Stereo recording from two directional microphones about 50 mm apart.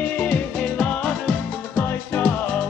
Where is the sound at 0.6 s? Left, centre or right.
Left.